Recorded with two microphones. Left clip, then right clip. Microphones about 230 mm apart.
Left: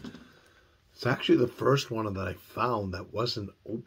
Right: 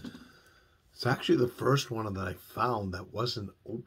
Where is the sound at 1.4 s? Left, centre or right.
Centre.